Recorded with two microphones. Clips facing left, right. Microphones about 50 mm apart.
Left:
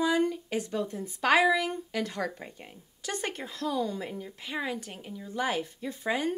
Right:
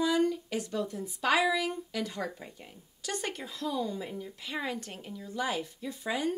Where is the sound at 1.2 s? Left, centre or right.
Left.